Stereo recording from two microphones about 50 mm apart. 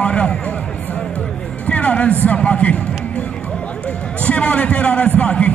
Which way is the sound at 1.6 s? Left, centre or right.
Left.